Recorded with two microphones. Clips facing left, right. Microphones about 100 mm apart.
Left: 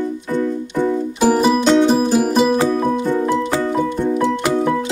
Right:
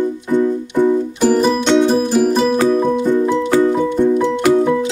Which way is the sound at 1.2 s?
10° left (ahead or behind).